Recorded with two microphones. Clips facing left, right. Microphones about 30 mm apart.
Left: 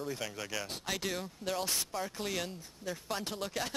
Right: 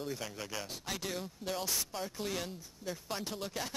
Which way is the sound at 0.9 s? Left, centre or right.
Centre.